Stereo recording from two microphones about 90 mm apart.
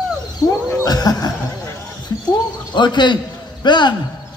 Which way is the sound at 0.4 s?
40° left (ahead or behind).